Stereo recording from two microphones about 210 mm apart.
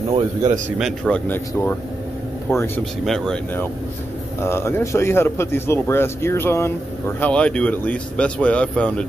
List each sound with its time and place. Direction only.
0.1 s speech: 35° right (ahead or behind)
0.7 s speech: centre (ahead or behind)